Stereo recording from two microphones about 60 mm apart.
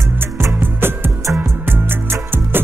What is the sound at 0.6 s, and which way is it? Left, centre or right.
Music, right.